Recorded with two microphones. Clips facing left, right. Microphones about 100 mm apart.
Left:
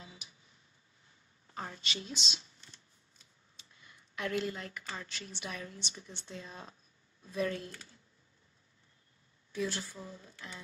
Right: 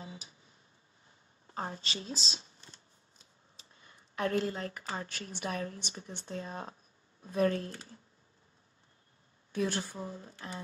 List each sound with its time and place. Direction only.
0.0 s a sound: 35° right (ahead or behind)
1.5 s shuffling cards: 35° right (ahead or behind)
5.0 s speech: 45° right (ahead or behind)
9.5 s speech: 50° right (ahead or behind)
9.8 s speech: 40° right (ahead or behind)